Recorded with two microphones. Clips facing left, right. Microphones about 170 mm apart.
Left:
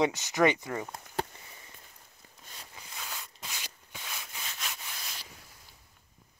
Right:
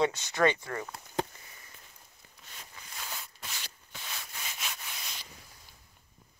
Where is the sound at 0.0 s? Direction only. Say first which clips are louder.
Left 1 dB; 20° left (ahead or behind).